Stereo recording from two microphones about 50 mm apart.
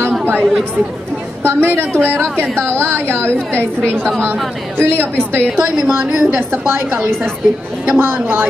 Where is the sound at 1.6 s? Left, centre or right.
Right.